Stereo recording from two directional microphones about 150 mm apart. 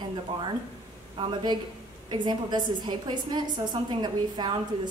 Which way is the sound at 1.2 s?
30° right (ahead or behind).